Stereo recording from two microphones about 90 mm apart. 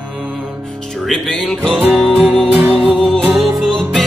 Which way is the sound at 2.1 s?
15° right (ahead or behind).